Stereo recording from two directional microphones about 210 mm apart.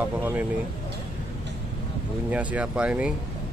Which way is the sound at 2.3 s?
5° right (ahead or behind).